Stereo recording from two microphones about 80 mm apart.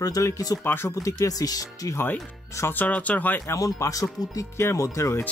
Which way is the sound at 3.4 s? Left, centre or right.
Left.